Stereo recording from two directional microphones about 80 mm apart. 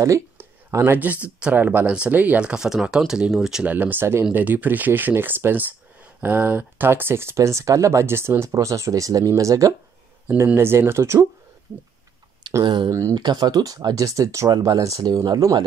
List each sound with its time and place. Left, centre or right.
0.7 s speech: right
0.9 s speech: right
3.6 s speech: right
10.2 s speech: right
12.6 s speech: right
13.1 s speech: right